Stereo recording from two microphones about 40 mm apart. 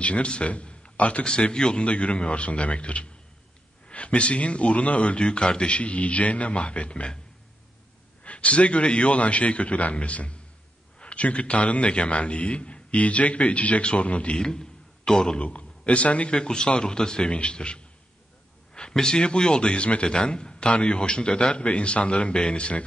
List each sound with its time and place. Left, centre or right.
0.0 s a man's voice: left
1.9 s a man's voice: left
8.2 s a man's voice: left
14.3 s a man's voice: centre
15.3 s speech: left
16.3 s a man's voice: centre